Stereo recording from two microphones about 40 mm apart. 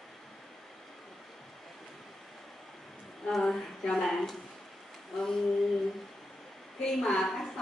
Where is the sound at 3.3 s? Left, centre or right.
Centre.